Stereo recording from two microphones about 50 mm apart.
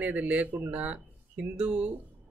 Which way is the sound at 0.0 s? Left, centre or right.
Right.